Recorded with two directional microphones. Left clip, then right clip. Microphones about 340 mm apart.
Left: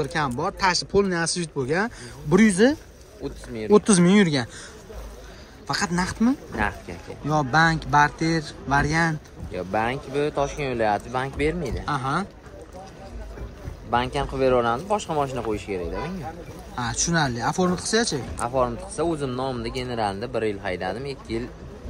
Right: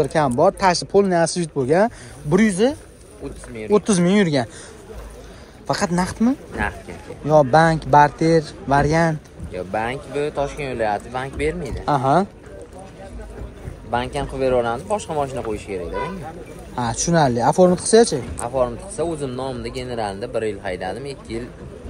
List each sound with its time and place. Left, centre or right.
0.0 s speech: centre
5.7 s speech: centre
6.5 s speech: left
7.2 s speech: centre
9.5 s speech: left
11.8 s speech: centre
13.8 s speech: left
16.7 s speech: centre
18.4 s speech: left